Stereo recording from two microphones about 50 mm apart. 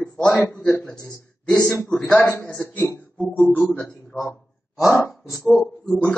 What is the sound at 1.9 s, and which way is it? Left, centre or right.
Speech, centre.